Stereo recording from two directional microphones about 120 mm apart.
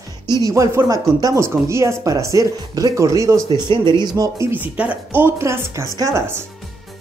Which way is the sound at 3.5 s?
40° right (ahead or behind).